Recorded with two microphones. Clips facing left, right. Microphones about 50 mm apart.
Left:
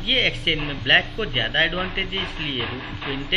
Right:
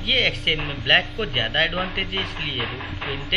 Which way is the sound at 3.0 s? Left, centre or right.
Right.